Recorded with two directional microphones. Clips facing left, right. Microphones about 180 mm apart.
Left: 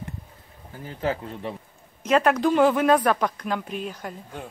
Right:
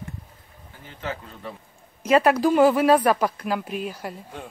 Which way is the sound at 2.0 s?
10° right (ahead or behind).